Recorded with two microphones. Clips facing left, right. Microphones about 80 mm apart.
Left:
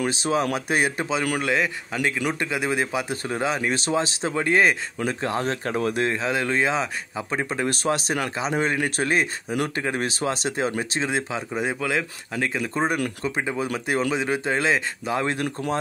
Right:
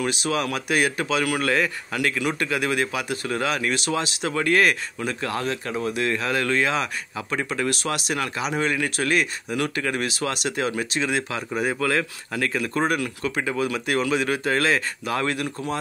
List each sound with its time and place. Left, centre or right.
0.0 s a man's voice: left
6.0 s speech: left